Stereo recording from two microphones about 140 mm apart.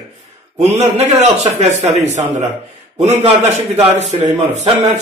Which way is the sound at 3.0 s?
55° right (ahead or behind).